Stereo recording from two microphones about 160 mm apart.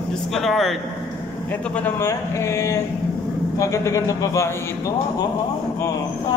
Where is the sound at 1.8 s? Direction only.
15° left (ahead or behind).